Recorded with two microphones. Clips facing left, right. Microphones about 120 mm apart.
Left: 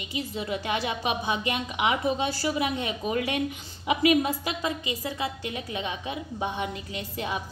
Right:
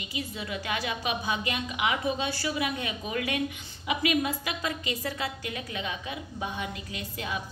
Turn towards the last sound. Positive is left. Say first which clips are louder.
# left 3 dB
turn(degrees=30)  # may be behind; listen again after turning